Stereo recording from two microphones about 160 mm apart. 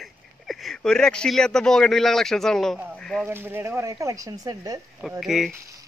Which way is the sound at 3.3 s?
15° right (ahead or behind).